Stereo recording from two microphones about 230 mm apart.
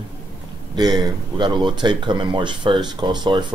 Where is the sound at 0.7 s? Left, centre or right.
Centre.